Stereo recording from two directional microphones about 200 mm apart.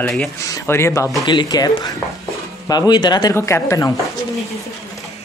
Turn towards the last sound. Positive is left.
turn(degrees=15)  # may be behind; listen again after turning